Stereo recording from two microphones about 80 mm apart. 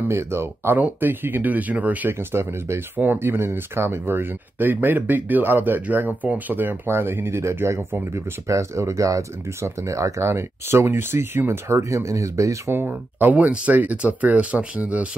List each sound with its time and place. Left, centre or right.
0.1 s speech: right
2.1 s speech: right
12.7 s speech: right